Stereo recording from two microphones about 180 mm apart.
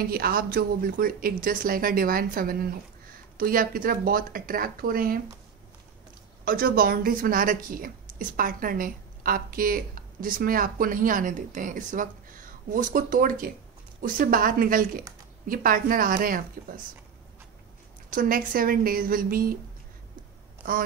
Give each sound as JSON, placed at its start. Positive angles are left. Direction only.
{"t": 0.1, "sound": "a woman's voice", "side_deg": -55}
{"t": 6.4, "sound": "a woman's voice", "side_deg": -55}
{"t": 18.1, "sound": "a woman's voice", "side_deg": -50}